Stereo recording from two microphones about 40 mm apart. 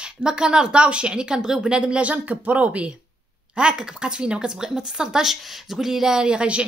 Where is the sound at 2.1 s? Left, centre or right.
Right.